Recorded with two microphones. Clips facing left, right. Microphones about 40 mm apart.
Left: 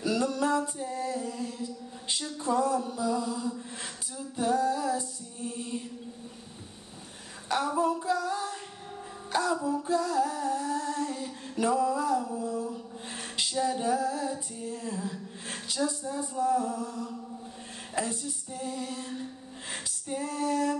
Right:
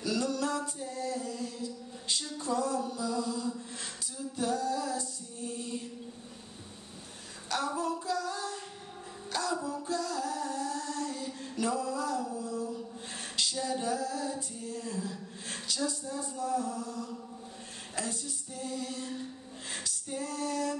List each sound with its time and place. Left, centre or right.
0.0 s music: centre
7.4 s female singing: centre
9.3 s humming: centre
16.1 s a sound: left
17.9 s female singing: centre